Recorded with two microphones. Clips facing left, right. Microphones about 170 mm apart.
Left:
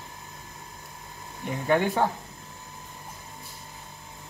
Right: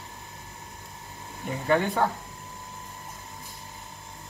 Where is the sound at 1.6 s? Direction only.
5° left (ahead or behind).